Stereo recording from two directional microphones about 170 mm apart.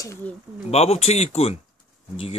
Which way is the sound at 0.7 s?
35° left (ahead or behind).